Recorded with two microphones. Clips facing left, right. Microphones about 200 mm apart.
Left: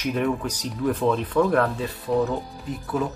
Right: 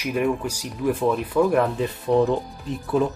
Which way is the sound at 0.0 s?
5° right (ahead or behind).